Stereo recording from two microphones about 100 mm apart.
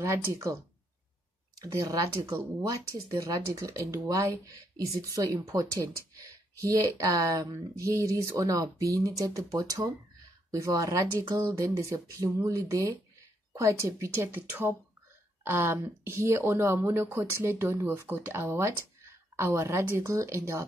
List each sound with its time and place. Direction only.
0.0 s a woman's voice: 30° right (ahead or behind)
1.6 s a woman's voice: 35° right (ahead or behind)